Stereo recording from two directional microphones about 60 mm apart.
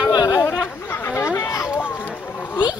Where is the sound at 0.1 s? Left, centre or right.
Left.